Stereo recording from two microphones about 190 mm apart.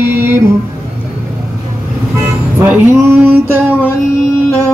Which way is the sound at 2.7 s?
5° right (ahead or behind).